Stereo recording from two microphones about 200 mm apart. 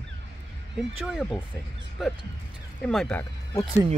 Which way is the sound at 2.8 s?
5° left (ahead or behind).